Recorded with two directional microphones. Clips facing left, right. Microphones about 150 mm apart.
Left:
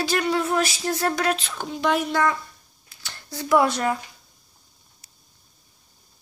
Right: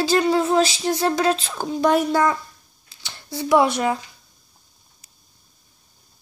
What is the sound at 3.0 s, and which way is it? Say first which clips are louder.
Speech: right 5 dB; 20° right (ahead or behind).